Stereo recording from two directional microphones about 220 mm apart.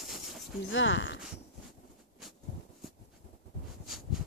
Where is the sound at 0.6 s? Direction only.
60° left (ahead or behind).